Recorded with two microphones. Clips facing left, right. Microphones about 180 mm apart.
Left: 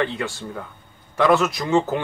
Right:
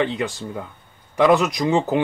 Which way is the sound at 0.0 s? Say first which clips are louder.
Right 2 dB; 15° right (ahead or behind).